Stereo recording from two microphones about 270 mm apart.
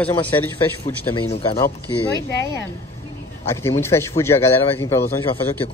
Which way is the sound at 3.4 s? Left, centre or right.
Centre.